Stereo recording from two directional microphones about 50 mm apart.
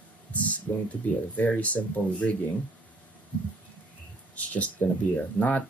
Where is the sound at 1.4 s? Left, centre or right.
Left.